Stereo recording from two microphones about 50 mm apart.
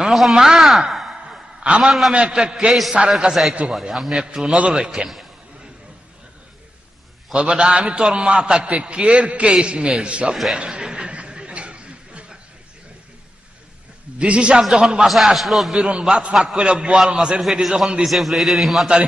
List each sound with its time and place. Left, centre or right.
0.1 s a sound: centre
1.8 s a man's voice: centre
7.3 s a man's voice: centre
10.3 s a man's voice: centre
10.6 s a sound: centre
14.1 s a man's voice: right
15.0 s a man's voice: centre
15.7 s a man's voice: right; by 18.9 s centre